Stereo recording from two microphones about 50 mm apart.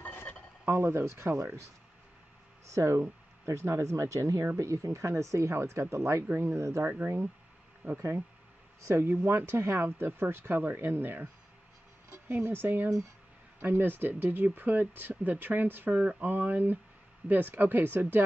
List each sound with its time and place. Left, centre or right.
0.7 s speech: right
2.6 s speech: right
4.6 s speech: right
6.9 s speech: right
8.8 s speech: right
10.6 s speech: right
12.3 s speech: right
15.9 s speech: right
16.3 s speech: right